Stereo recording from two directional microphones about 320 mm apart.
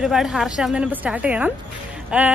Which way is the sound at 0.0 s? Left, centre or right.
Centre.